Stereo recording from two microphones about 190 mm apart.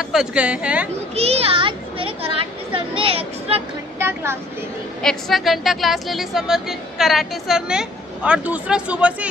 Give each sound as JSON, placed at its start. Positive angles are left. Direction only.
{"t": 0.0, "sound": "a woman's voice", "side_deg": -5}
{"t": 1.1, "sound": "a sound", "side_deg": -30}
{"t": 4.0, "sound": "speech", "side_deg": -15}
{"t": 5.0, "sound": "a woman's voice", "side_deg": 0}